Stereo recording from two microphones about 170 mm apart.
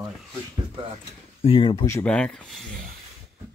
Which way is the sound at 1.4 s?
30° left (ahead or behind).